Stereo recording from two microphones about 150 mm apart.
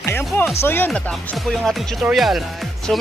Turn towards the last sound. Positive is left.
turn(degrees=0)  # may be behind; listen again after turning